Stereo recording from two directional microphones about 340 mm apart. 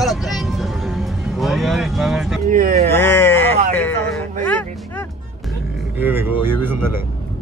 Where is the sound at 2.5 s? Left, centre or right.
Right.